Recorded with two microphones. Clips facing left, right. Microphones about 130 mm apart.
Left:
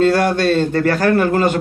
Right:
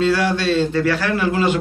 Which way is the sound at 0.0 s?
50° left (ahead or behind).